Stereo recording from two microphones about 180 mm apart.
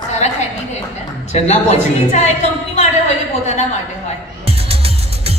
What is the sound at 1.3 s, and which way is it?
A woman's voice, 40° left (ahead or behind).